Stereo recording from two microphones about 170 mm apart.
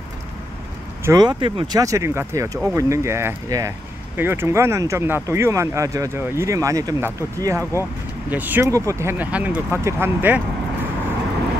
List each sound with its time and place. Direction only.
1.0 s speech: 20° right (ahead or behind)